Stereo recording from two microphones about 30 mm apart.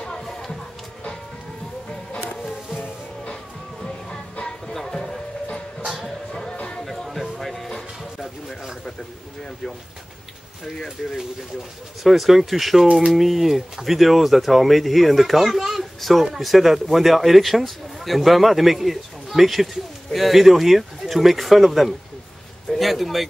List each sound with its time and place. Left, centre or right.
0.2 s music: centre
2.1 s music: left
3.8 s music: left
6.5 s a sound: left
7.2 s music: centre
9.4 s speech: left
12.0 s a man's voice: centre